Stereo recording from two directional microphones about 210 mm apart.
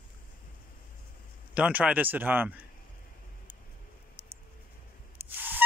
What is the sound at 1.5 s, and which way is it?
Speech, 5° right (ahead or behind).